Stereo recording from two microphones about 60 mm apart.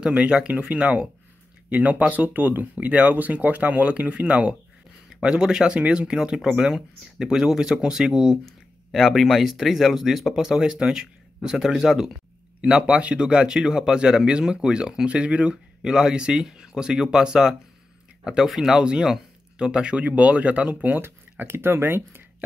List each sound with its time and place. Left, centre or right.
0.0 s speech: centre
12.6 s speech: centre
21.0 s speech: right